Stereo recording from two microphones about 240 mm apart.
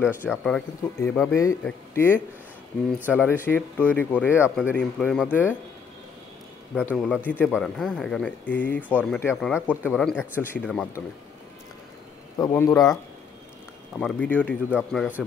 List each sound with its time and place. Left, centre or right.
0.0 s speech: centre
6.7 s speech: centre
12.4 s speech: centre
13.9 s speech: centre